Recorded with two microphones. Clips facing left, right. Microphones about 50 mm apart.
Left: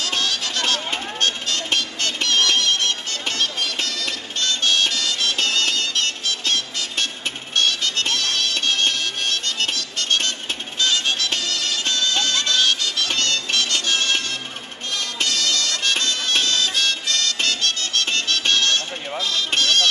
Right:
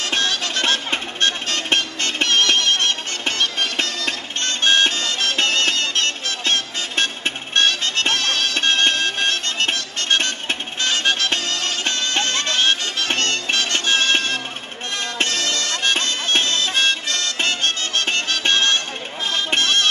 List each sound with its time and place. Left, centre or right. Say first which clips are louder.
0.0 s music: right 2 dB; right
15.0 s bagpipes: right 2 dB; right
19.2 s music: right 2 dB; right